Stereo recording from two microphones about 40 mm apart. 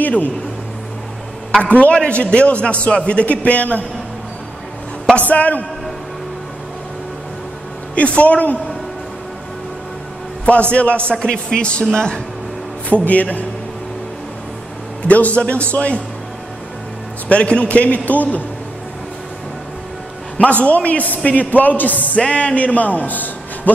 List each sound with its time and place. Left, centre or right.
0.0 s speech: left
1.6 s a man's voice: left
5.3 s a man's voice: left
7.9 s a man's voice: left
10.4 s a man's voice: left
12.9 s a man's voice: left
15.0 s a man's voice: left
17.3 s a man's voice: left
20.6 s a man's voice: left
22.2 s a man's voice: left